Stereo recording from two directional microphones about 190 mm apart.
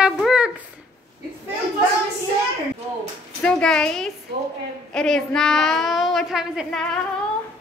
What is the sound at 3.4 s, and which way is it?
A woman's voice, 5° left (ahead or behind).